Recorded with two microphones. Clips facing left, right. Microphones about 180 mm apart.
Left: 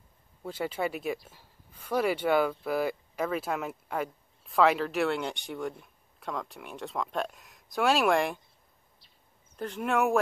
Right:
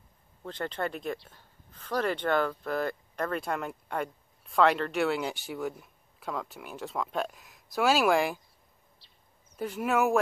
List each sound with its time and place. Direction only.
0.4 s speech: 10° left (ahead or behind)
9.0 s a sound: 30° right (ahead or behind)
9.6 s speech: 5° right (ahead or behind)